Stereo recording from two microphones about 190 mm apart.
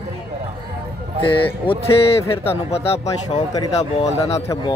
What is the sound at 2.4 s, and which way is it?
Speech, 30° left (ahead or behind).